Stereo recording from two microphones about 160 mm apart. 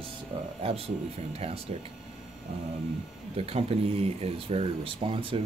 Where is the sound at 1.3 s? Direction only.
40° right (ahead or behind).